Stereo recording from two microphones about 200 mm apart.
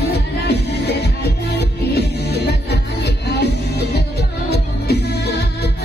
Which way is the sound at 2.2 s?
55° left (ahead or behind).